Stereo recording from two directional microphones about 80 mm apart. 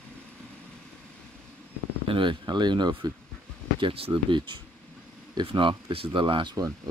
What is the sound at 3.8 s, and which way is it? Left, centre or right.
Speech, right.